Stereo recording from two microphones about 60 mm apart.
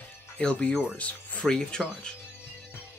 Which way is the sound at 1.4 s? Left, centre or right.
Centre.